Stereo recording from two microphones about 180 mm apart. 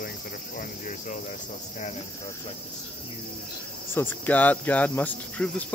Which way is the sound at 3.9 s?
10° left (ahead or behind).